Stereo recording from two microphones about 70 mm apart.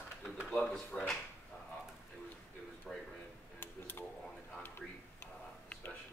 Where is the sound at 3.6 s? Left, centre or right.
Left.